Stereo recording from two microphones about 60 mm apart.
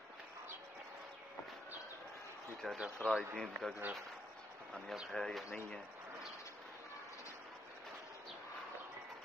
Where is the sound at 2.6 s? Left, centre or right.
Centre.